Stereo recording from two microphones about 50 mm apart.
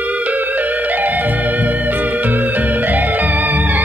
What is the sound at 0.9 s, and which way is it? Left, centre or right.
Music, right.